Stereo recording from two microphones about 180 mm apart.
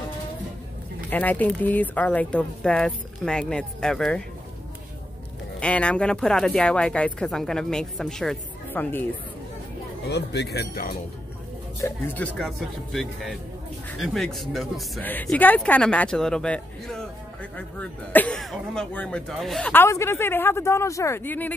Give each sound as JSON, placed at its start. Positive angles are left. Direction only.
{"t": 1.1, "sound": "speech", "side_deg": 10}
{"t": 5.6, "sound": "speech", "side_deg": 5}
{"t": 10.0, "sound": "speech", "side_deg": 70}
{"t": 11.8, "sound": "a man's voice", "side_deg": 10}